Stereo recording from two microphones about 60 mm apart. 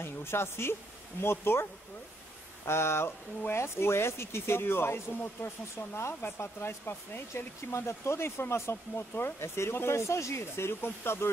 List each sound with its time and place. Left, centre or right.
0.0 s speech: left